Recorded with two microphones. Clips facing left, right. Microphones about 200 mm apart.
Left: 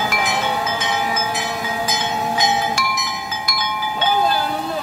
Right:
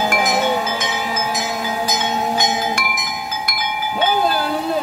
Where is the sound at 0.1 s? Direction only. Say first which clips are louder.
Right 4 dB; 45° right (ahead or behind).